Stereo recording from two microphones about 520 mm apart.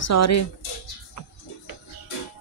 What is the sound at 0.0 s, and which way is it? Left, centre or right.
Speech, left.